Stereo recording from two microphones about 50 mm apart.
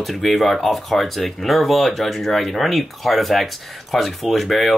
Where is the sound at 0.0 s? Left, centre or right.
Centre.